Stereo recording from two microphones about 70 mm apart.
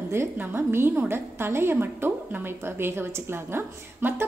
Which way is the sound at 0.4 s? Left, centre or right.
Right.